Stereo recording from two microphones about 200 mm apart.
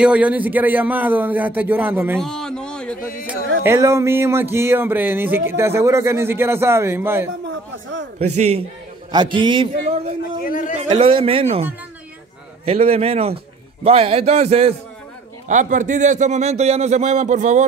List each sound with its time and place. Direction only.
0.0 s a man's voice: 5° right (ahead or behind)
2.1 s a sound: 5° left (ahead or behind)
3.6 s a man's voice: 15° right (ahead or behind)
8.2 s a man's voice: 35° right (ahead or behind)
10.4 s a man's voice: 45° left (ahead or behind)
10.8 s a man's voice: 25° right (ahead or behind)
12.6 s a man's voice: 30° right (ahead or behind)